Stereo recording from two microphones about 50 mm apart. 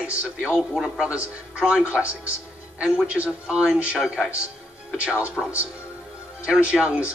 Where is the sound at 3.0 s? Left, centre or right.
Right.